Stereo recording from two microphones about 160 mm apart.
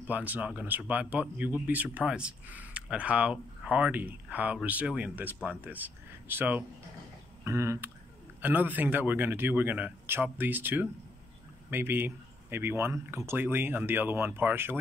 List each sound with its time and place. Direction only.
0.0 s speech: 10° right (ahead or behind)